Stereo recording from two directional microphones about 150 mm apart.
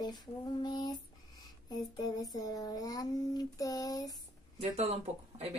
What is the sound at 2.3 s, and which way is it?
Speech, 25° left (ahead or behind).